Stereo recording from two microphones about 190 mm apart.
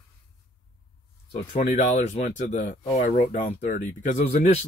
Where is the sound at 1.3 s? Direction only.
45° left (ahead or behind).